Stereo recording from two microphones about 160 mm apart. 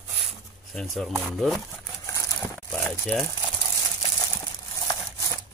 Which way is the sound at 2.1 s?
20° left (ahead or behind).